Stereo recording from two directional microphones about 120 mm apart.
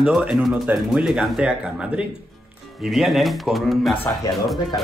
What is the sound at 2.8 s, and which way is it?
Speech, 5° right (ahead or behind).